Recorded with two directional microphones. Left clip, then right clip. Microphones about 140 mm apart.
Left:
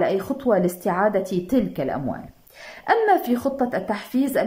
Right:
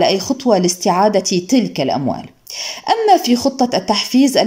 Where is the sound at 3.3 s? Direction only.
15° right (ahead or behind).